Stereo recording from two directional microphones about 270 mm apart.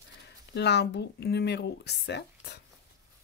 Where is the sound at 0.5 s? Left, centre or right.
Left.